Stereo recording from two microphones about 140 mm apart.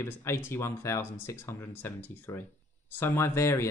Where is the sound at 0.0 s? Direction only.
20° left (ahead or behind).